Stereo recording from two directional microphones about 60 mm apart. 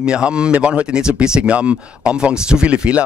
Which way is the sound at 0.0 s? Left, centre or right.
Centre.